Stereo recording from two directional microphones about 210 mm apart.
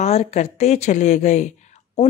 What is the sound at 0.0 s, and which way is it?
Speech, 30° left (ahead or behind).